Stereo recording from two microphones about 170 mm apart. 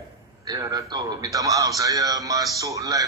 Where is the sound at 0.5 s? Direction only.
20° right (ahead or behind).